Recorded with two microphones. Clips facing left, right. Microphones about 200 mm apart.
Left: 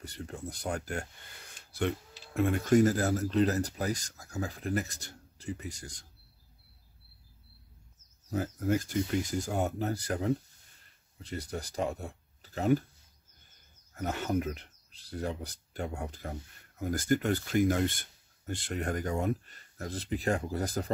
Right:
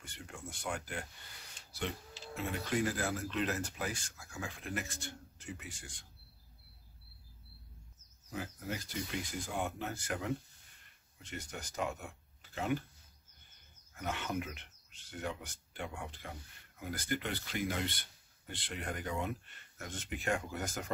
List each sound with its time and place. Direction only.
0.0 s speech: 35° left (ahead or behind)
1.7 s speech: 55° left (ahead or behind)
8.3 s speech: 45° left (ahead or behind)
13.9 s speech: 40° left (ahead or behind)